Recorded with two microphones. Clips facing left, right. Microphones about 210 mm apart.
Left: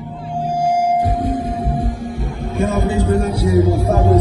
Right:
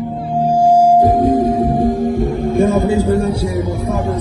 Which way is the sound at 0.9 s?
50° right (ahead or behind).